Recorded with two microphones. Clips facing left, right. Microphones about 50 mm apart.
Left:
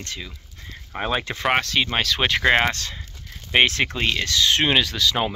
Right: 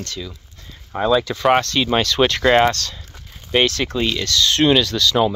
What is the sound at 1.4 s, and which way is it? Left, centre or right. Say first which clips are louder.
Speech: right 1 dB; centre.